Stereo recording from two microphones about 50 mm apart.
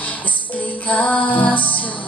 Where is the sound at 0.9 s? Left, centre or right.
Left.